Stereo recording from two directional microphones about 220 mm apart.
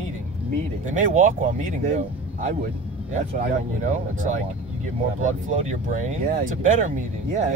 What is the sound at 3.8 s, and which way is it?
Speech, 35° right (ahead or behind).